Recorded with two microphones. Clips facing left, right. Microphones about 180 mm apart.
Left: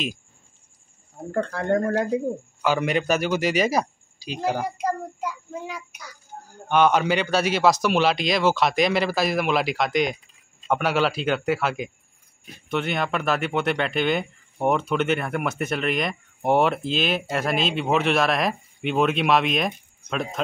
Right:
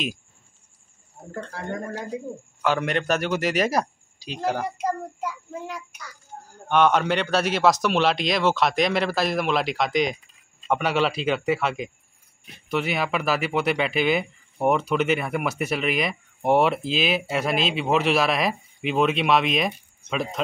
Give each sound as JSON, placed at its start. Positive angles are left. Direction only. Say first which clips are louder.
{"t": 1.3, "sound": "speech", "louder": "left 9 dB", "side_deg": 60}
{"t": 2.6, "sound": "speech", "louder": "left 1 dB", "side_deg": 0}